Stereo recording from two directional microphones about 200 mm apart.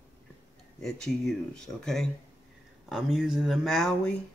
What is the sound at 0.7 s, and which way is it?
Speech, 5° left (ahead or behind).